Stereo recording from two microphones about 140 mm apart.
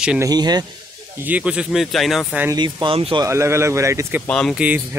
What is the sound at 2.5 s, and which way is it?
Speech, 35° right (ahead or behind).